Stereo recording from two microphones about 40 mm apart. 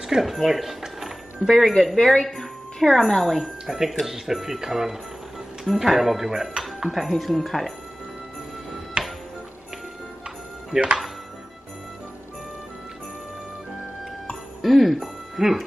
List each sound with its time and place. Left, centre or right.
0.0 s a sound: centre
1.5 s speech: centre
2.2 s wind chime: centre
3.2 s speech: centre
3.6 s speech: centre
9.0 s music: centre
10.7 s speech: centre
14.6 s music: centre